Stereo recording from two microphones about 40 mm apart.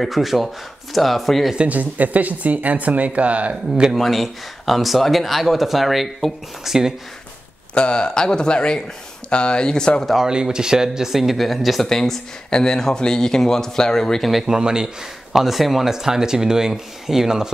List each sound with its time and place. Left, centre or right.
0.0 s speech: centre
1.7 s speech: right
3.9 s speech: centre
7.7 s speech: left
10.2 s speech: centre
11.9 s speech: centre
14.2 s speech: centre
14.5 s speech: centre
15.3 s speech: centre